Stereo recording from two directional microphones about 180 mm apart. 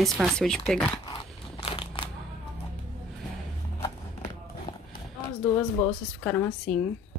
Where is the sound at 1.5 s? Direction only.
30° left (ahead or behind).